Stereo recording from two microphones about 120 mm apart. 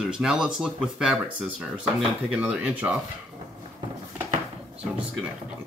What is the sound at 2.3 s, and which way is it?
Speech, 10° right (ahead or behind).